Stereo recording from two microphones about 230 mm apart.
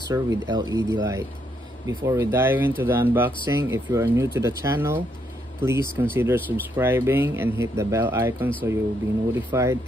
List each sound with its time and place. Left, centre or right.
0.1 s speech: centre